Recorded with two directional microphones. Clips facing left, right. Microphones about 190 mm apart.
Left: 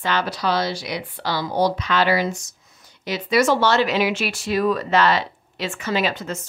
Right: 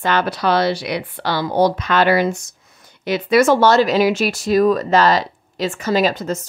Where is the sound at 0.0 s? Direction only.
55° right (ahead or behind).